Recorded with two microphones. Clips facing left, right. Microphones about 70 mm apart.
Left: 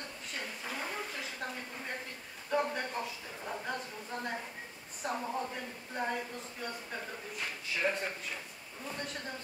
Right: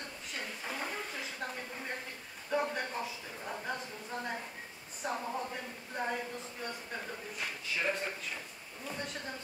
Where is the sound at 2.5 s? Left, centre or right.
Centre.